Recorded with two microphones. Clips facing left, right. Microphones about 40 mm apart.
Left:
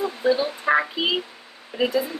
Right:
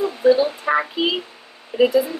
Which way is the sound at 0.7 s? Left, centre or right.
Centre.